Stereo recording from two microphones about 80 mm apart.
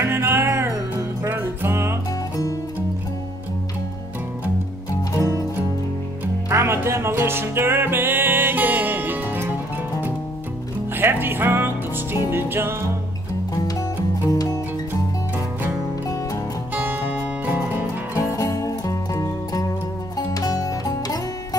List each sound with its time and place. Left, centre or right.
0.0 s music: right
6.5 s music: right
11.0 s music: right
14.3 s music: left
16.7 s music: right
18.3 s music: left